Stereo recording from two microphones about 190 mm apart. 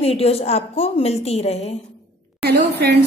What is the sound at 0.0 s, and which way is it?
A woman's voice, 30° left (ahead or behind).